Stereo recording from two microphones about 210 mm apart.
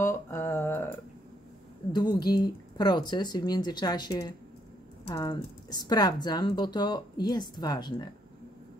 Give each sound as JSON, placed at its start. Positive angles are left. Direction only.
{"t": 0.0, "sound": "speech", "side_deg": 15}
{"t": 1.9, "sound": "speech", "side_deg": 20}